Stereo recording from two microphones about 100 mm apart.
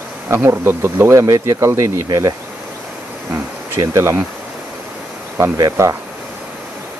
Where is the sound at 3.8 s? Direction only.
30° right (ahead or behind).